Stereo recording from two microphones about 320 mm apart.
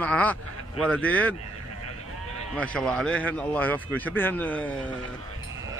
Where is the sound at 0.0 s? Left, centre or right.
Centre.